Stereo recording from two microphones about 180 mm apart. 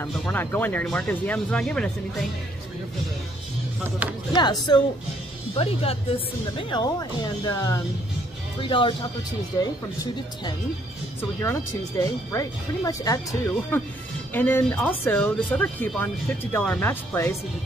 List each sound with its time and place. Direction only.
0.0 s speech: 10° left (ahead or behind)
4.4 s speech: 25° left (ahead or behind)
12.0 s speech: 20° left (ahead or behind)